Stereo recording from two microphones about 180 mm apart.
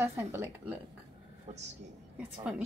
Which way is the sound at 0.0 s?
15° right (ahead or behind).